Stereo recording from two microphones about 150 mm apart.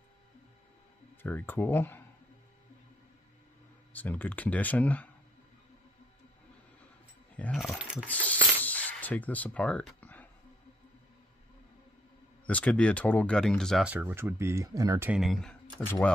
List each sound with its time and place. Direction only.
1.2 s speech: 15° left (ahead or behind)
3.9 s speech: 10° left (ahead or behind)
7.3 s speech: 5° left (ahead or behind)
8.1 s a sound: 10° left (ahead or behind)
12.4 s speech: 10° left (ahead or behind)
13.8 s speech: 10° right (ahead or behind)
15.0 s speech: centre (ahead or behind)
15.8 s speech: 15° left (ahead or behind)